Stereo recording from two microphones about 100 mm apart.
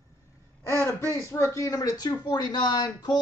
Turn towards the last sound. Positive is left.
turn(degrees=45)  # may be behind; listen again after turning